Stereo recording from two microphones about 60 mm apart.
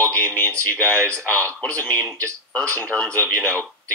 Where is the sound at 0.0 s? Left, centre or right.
Left.